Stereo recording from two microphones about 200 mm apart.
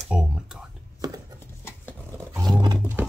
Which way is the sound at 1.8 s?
15° right (ahead or behind).